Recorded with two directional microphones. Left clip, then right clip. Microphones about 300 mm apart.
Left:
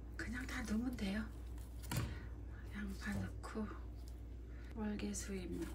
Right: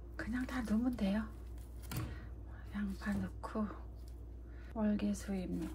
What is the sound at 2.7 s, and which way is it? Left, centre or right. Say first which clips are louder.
Speech: right 5 dB; centre.